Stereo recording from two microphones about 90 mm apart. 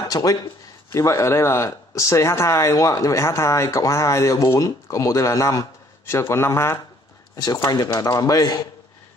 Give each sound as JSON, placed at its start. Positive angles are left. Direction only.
{"t": 0.1, "sound": "a man's voice", "side_deg": 40}
{"t": 7.3, "sound": "speech", "side_deg": 45}